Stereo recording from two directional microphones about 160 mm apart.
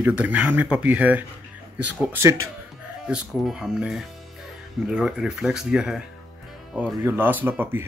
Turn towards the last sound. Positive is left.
turn(degrees=-15)  # may be behind; listen again after turning